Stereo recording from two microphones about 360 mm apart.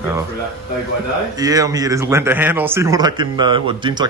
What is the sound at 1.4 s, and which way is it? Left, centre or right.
A man's voice, centre.